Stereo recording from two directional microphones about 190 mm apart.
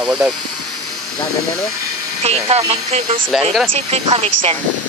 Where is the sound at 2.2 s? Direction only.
35° right (ahead or behind).